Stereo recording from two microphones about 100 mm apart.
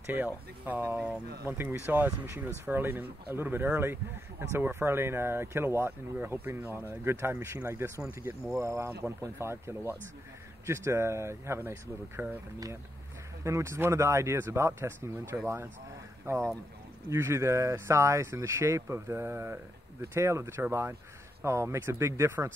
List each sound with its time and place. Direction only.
0.0 s speech: 20° right (ahead or behind)
13.4 s speech: 30° right (ahead or behind)
17.1 s speech: 30° right (ahead or behind)